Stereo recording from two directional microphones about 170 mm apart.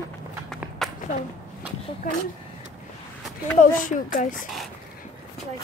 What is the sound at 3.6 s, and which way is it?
Speech, 50° left (ahead or behind).